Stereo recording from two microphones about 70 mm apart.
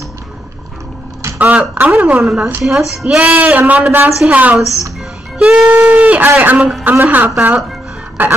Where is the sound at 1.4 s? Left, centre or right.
Right.